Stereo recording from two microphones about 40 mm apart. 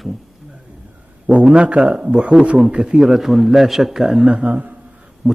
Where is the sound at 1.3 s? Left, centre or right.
Right; by 4.2 s centre.